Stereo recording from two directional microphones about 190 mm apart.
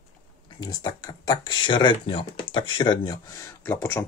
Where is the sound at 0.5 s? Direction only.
20° left (ahead or behind).